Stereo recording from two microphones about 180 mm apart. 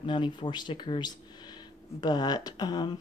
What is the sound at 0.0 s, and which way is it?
Speech, 25° left (ahead or behind).